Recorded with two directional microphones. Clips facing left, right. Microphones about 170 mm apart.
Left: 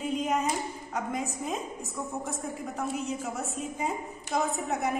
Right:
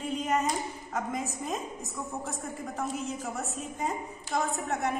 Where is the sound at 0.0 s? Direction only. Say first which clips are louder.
Left 1 dB; centre (ahead or behind).